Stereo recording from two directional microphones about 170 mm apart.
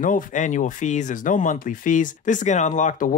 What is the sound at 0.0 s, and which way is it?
Speech, 50° left (ahead or behind).